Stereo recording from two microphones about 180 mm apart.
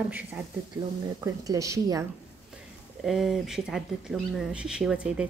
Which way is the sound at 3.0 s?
Centre (ahead or behind).